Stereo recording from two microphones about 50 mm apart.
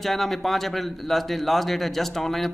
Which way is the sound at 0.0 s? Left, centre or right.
Centre.